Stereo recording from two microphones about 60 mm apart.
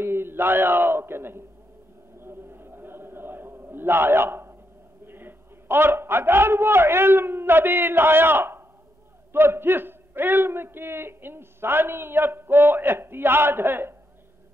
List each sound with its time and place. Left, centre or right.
0.0 s a man's voice: right
2.1 s a sound: right
5.0 s a man's voice: right